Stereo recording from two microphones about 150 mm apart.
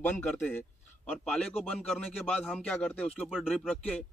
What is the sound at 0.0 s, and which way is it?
A man's voice, 10° left (ahead or behind).